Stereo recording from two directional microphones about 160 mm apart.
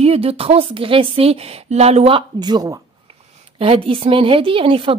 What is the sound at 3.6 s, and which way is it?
A woman's voice, 35° right (ahead or behind).